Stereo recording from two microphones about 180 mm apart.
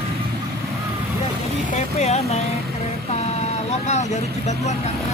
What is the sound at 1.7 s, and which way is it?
Vehicle, 40° left (ahead or behind).